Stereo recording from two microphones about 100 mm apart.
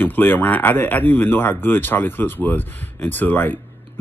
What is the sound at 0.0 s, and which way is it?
Speech, 20° left (ahead or behind).